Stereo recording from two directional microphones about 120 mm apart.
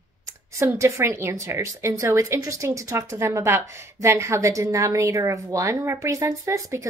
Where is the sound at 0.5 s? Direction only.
25° right (ahead or behind).